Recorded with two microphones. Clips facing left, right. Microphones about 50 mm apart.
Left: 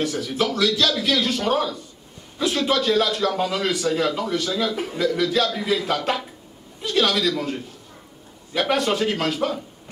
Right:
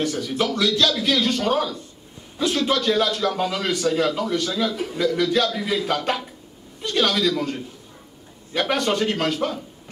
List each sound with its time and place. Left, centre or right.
0.0 s a man's voice: centre
4.6 s a man's voice: left
4.9 s a man's voice: centre